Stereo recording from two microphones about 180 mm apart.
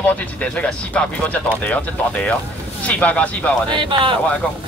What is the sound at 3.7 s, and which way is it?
Speech, 25° right (ahead or behind).